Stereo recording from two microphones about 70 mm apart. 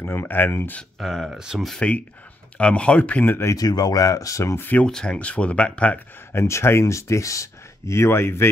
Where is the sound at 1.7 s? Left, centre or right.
Centre.